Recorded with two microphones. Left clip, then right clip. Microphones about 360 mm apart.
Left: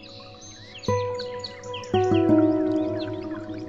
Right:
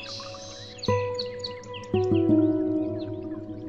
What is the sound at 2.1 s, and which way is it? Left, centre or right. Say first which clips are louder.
Music: left 2 dB; left.